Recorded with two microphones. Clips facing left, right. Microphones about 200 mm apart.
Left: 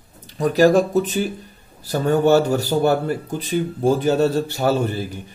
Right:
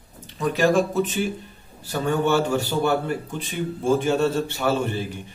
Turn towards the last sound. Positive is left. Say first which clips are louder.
# left 3 dB
turn(degrees=40)  # may be behind; listen again after turning